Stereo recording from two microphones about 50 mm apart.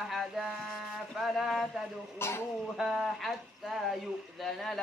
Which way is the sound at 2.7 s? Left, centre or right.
Centre.